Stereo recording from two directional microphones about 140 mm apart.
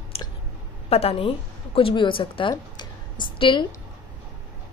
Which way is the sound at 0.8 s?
45° left (ahead or behind).